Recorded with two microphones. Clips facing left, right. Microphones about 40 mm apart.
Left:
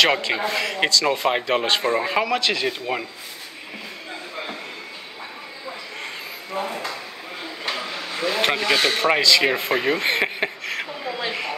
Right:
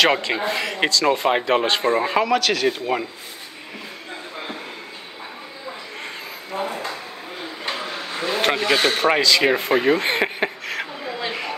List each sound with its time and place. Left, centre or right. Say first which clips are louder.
0.0 s a man's voice: right 1 dB; centre
2.3 s speech: right 2 dB; centre
2.6 s a man's voice: right 4 dB; centre
4.1 s a sound: even; centre
6.5 s drawer open or close: right 1 dB; centre
7.4 s a sound: even; centre